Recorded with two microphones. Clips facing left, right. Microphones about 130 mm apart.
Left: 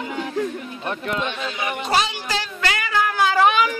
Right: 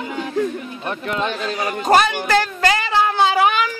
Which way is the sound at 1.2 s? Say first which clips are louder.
Right 4 dB; 40° right (ahead or behind).